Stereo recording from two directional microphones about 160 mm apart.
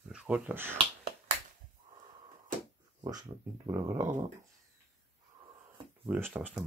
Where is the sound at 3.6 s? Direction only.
20° right (ahead or behind).